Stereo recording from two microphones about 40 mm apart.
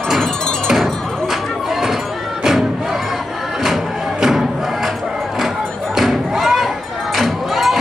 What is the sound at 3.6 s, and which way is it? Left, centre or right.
Music, centre.